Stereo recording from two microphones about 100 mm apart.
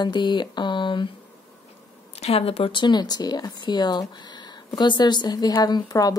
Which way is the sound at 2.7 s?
50° left (ahead or behind).